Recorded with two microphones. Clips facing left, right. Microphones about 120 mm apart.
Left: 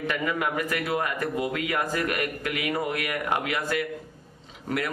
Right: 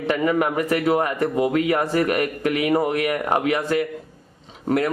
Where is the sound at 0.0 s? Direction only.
35° right (ahead or behind).